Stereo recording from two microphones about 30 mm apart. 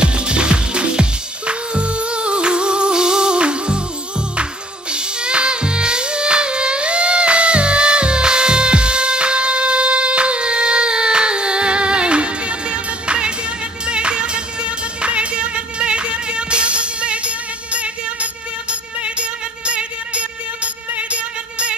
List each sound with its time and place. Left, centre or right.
0.0 s music: right
4.9 s music: right